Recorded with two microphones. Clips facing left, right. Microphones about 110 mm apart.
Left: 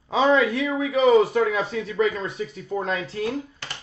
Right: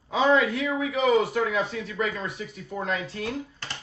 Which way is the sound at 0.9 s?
35° left (ahead or behind).